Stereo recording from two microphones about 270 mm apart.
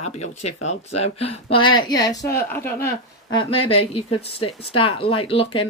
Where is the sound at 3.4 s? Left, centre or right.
Left.